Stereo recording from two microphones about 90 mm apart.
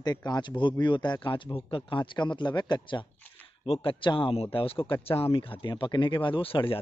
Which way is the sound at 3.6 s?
70° left (ahead or behind).